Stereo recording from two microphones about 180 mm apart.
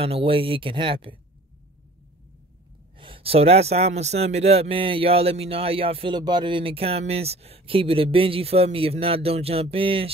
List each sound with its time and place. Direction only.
0.0 s speech: 30° right (ahead or behind)
3.0 s a man's voice: 30° right (ahead or behind)